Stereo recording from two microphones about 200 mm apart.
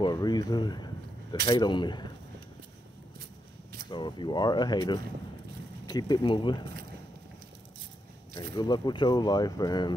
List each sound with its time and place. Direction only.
0.0 s speech: 20° left (ahead or behind)
3.9 s speech: 25° left (ahead or behind)
8.4 s speech: 20° left (ahead or behind)